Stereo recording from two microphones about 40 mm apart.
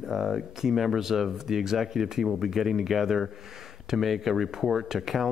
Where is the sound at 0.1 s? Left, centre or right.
Centre.